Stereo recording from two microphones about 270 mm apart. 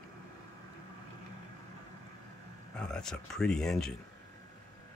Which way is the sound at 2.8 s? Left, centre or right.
Centre.